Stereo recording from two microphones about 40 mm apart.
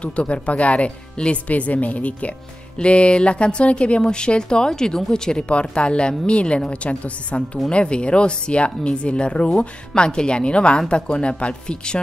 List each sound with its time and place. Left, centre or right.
0.0 s speech: left
1.5 s a woman's voice: left; by 5.4 s centre
5.5 s a woman's voice: left